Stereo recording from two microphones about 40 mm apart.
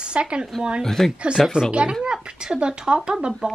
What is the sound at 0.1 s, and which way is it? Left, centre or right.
Speech, right.